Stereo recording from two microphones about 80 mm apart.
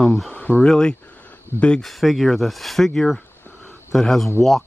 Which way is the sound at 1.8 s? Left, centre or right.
Centre.